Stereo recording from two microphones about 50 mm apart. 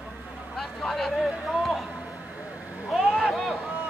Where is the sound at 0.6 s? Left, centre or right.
Centre.